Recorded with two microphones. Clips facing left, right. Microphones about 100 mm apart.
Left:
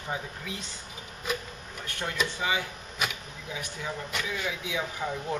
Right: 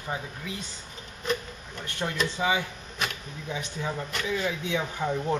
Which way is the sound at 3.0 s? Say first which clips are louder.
Even; 5° left (ahead or behind).